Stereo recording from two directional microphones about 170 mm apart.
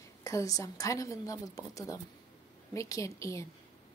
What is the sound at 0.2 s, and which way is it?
A woman's voice, 20° left (ahead or behind).